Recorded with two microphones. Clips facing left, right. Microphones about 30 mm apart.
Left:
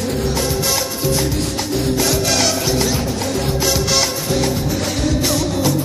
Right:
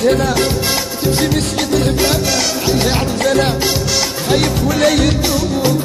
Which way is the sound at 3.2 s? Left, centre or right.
Right.